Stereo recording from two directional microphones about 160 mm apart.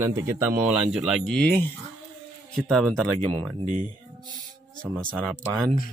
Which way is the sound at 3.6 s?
45° right (ahead or behind).